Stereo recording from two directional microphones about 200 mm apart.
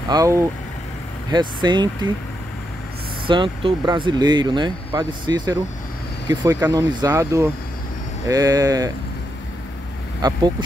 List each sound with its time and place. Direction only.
0.1 s speech: 15° right (ahead or behind)
3.3 s speech: 25° right (ahead or behind)